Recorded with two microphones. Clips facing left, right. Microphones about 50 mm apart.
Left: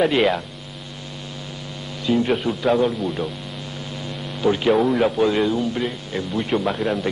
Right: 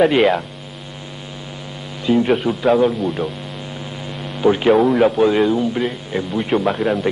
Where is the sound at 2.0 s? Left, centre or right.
Centre.